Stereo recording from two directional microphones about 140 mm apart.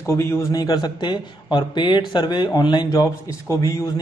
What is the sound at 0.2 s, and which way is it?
A man's voice, 25° left (ahead or behind).